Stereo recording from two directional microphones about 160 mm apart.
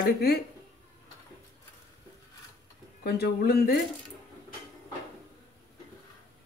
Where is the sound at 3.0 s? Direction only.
85° left.